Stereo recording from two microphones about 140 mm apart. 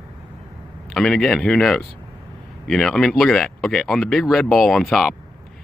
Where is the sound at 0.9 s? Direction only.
5° left (ahead or behind).